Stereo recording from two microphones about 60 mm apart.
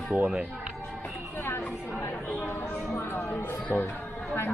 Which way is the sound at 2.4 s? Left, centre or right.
Left.